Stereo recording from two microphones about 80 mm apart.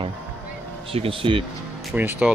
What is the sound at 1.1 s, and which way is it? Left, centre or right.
Speech, right.